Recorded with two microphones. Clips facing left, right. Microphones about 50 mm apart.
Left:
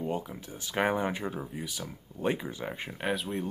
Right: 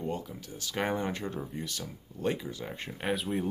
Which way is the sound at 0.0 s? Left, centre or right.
Centre.